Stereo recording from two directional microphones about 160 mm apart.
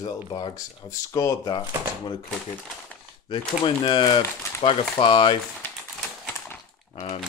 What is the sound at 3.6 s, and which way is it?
Speech, 30° left (ahead or behind).